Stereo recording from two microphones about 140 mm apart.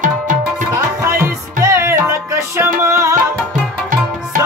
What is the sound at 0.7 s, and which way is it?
Music, 20° right (ahead or behind).